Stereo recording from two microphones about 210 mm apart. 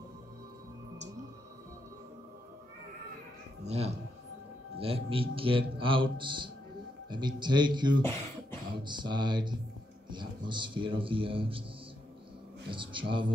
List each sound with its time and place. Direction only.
3.6 s a man's voice: 30° right (ahead or behind)
8.0 s speech: 10° left (ahead or behind)
8.8 s a man's voice: 20° right (ahead or behind)
12.7 s a man's voice: 25° right (ahead or behind)